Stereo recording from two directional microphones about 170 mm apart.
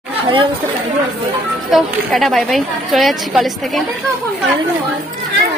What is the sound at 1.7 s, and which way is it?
A woman's voice, centre (ahead or behind).